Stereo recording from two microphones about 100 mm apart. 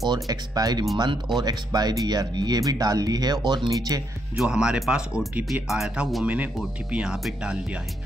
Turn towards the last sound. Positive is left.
turn(degrees=-10)  # may be behind; listen again after turning